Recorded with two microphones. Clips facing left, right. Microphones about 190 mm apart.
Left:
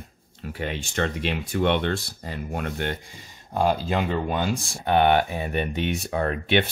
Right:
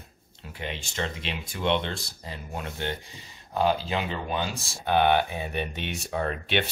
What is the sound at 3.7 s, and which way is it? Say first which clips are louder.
Speech: left 5 dB; 50° left (ahead or behind).